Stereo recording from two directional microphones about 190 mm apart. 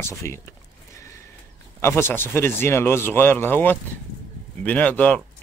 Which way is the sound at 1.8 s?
10° left (ahead or behind).